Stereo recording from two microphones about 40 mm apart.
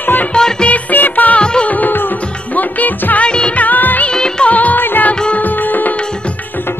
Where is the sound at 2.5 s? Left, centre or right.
Left.